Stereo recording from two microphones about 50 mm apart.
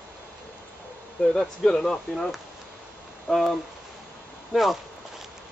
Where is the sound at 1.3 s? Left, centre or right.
Centre.